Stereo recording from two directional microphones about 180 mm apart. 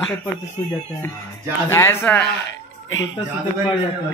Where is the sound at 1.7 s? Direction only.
15° left (ahead or behind).